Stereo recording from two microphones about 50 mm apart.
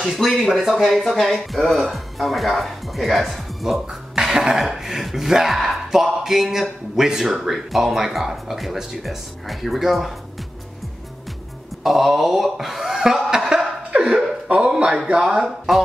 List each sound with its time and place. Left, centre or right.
0.0 s speech: centre
11.8 s speech: centre; by 15.4 s right
15.4 s speech: centre